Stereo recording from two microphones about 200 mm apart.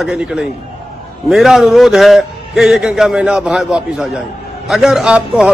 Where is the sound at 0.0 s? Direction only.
5° right (ahead or behind).